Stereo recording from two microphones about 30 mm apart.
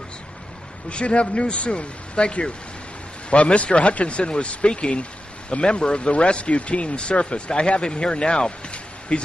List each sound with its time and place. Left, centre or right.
0.8 s speech: left